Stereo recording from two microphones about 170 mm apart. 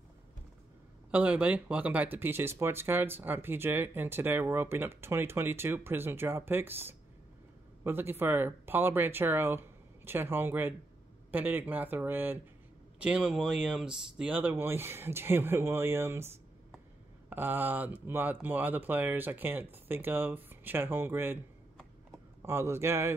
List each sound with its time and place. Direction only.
1.1 s speech: 10° right (ahead or behind)
17.3 s speech: 10° right (ahead or behind)
22.4 s speech: 15° right (ahead or behind)